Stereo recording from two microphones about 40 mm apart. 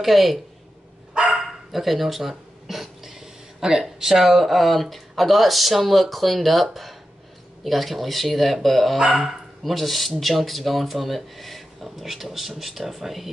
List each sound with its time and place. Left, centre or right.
0.0 s speech: centre
1.1 s dog: right
1.7 s a sound: centre
3.8 s speech: centre